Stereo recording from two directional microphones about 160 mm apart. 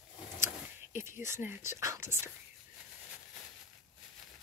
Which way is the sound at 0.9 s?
15° right (ahead or behind).